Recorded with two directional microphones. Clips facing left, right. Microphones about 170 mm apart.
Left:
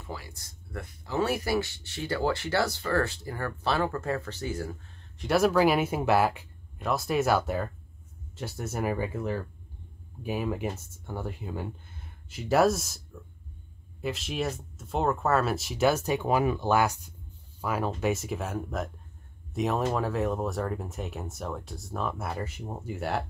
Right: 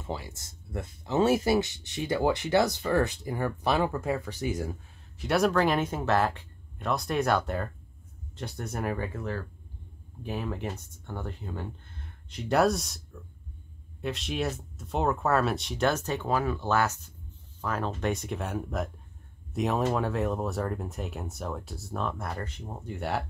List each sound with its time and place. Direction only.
0.0 s speech: 20° right (ahead or behind)
5.1 s speech: centre (ahead or behind)